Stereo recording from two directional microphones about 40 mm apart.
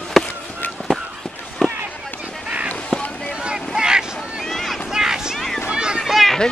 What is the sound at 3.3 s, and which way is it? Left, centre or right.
Boat, centre.